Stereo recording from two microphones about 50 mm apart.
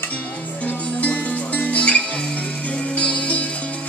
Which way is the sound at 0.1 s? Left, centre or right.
Left.